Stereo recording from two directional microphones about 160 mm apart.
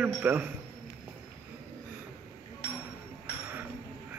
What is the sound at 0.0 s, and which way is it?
Speech, 10° right (ahead or behind).